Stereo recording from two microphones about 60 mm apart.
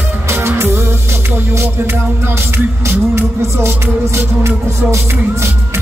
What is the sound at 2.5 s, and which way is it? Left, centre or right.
Music, right.